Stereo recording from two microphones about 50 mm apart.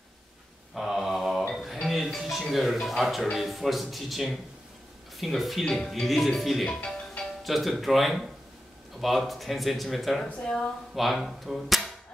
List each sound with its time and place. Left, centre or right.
0.7 s mantra: centre
1.5 s a sound: centre
1.9 s music: centre
2.5 s speech: centre
6.6 s speech: centre
7.4 s speech: centre
10.4 s speech: centre
11.0 s speech: centre